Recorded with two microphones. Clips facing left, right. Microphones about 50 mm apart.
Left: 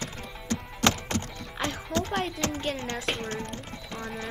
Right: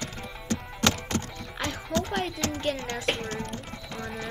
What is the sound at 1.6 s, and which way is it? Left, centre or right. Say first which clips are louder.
Music: even; centre.